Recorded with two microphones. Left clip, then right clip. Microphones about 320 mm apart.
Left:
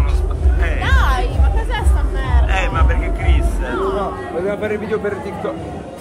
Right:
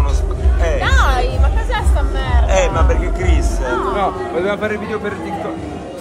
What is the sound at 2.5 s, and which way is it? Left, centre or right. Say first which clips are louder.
Music: right 5 dB; centre.